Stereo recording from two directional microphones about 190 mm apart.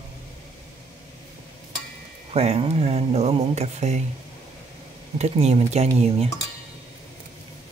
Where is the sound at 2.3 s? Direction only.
30° right (ahead or behind).